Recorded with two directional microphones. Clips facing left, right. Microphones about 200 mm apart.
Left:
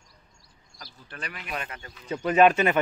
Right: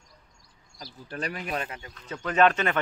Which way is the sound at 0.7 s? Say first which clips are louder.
Right 7 dB; 40° right (ahead or behind).